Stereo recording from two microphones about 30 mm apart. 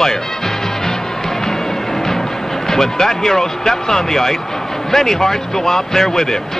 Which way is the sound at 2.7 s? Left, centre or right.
Centre.